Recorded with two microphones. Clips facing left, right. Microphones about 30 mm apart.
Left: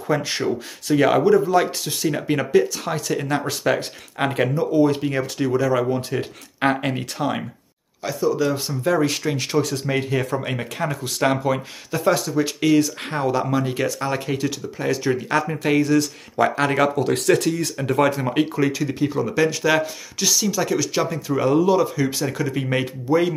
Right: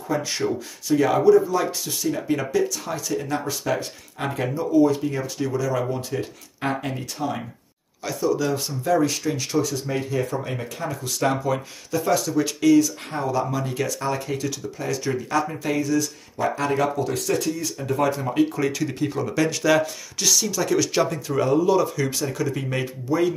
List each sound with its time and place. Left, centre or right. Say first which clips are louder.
0.3 s speech: left 2 dB; left
4.2 s speech: left 5 dB; left
4.6 s speech: right 1 dB; left
8.0 s speech: left 2 dB; centre
8.6 s speech: left 1 dB; left
15.6 s speech: left 5 dB; left
18.1 s speech: even; left
18.6 s speech: left 3 dB; centre
20.7 s speech: right 1 dB; centre
22.2 s speech: left 2 dB; left